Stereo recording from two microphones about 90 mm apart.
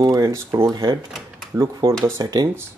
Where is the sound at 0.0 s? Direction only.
45° right (ahead or behind).